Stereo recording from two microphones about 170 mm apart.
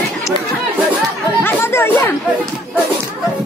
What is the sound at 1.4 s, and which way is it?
Chatter, 15° left (ahead or behind).